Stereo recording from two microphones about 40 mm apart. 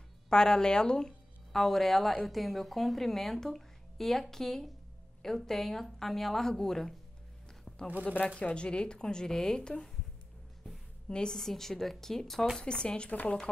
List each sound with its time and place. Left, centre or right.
0.3 s speech: centre
8.4 s speech: left
11.1 s a woman's voice: left
11.3 s speech: centre
12.5 s speech: left